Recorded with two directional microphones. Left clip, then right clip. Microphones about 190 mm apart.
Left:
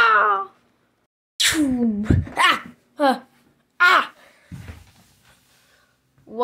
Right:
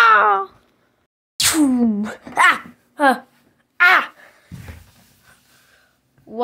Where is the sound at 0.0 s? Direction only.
20° right (ahead or behind).